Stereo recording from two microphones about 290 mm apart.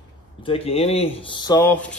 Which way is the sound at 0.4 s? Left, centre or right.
Centre.